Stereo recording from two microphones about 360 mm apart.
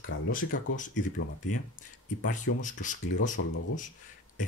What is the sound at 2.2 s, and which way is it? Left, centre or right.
Speech, left.